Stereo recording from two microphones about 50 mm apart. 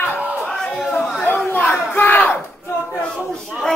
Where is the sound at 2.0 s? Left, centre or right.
Left.